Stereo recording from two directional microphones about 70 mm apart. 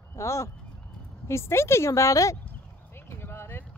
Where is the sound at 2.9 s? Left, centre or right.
Left.